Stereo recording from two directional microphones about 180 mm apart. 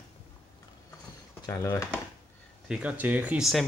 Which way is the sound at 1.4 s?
15° left (ahead or behind).